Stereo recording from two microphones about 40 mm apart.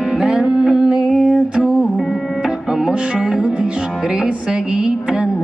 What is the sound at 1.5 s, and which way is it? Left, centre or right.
Music, right.